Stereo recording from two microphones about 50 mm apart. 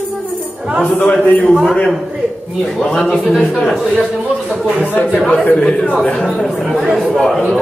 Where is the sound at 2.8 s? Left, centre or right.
Centre.